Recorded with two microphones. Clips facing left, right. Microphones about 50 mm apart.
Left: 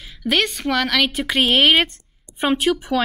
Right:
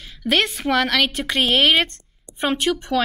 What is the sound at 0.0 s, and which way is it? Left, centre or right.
Speech, centre.